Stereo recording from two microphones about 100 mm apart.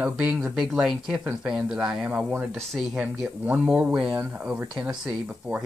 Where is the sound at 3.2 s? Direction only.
30° right (ahead or behind).